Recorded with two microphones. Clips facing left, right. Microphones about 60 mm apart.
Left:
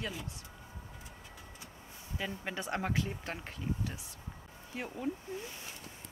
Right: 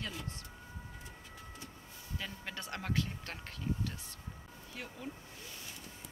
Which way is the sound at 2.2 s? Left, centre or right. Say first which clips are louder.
Left 6 dB; centre.